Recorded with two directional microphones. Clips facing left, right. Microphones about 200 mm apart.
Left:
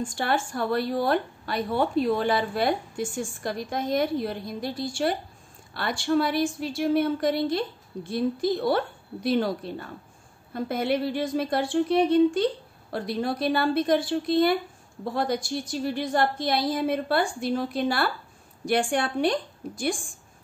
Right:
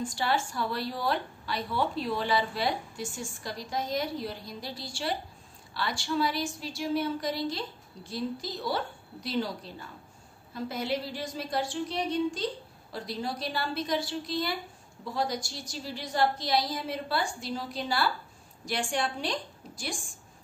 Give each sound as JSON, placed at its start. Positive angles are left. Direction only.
{"t": 0.0, "sound": "a woman's voice", "side_deg": 55}